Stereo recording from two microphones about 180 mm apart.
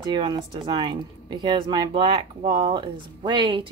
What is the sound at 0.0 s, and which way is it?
A woman's voice, 25° right (ahead or behind).